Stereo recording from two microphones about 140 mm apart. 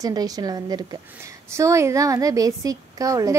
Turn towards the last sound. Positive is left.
turn(degrees=-25)  # may be behind; listen again after turning